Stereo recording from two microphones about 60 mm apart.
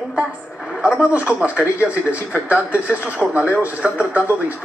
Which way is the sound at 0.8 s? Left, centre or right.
Right.